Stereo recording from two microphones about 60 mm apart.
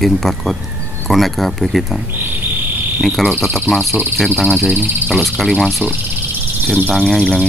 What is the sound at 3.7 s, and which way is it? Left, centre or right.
Speech, centre.